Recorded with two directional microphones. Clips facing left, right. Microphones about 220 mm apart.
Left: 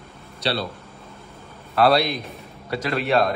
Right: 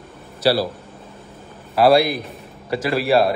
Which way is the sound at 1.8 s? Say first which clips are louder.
Right 4 dB; 5° right (ahead or behind).